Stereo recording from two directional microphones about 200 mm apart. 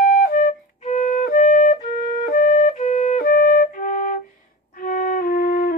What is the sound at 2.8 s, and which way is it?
Flute, 30° left (ahead or behind).